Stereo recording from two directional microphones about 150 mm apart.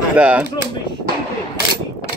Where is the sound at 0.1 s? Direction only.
10° right (ahead or behind).